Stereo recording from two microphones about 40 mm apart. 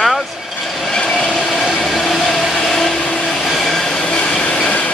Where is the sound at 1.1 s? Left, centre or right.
Centre.